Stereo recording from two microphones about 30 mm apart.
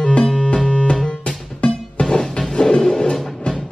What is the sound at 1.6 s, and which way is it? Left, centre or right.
Music, left.